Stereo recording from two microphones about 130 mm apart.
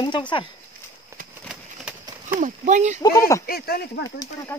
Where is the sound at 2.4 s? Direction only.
65° right (ahead or behind).